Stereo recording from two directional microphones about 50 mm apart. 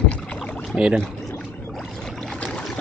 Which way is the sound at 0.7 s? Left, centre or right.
Right.